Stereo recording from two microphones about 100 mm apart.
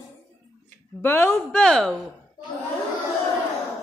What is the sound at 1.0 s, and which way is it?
Speech, 25° left (ahead or behind).